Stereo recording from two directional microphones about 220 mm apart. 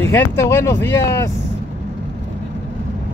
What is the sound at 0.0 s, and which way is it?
Speech, 10° left (ahead or behind).